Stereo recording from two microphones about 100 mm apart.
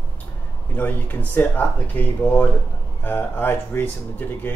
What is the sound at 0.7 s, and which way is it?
Speech, 20° left (ahead or behind).